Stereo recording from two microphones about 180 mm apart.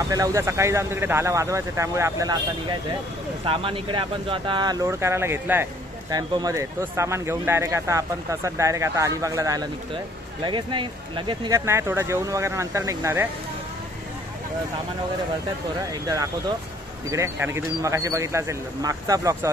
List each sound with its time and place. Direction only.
0.1 s speech: 20° right (ahead or behind)
15.9 s speech: 20° right (ahead or behind)